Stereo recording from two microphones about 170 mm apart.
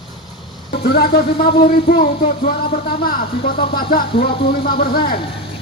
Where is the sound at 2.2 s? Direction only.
60° left (ahead or behind).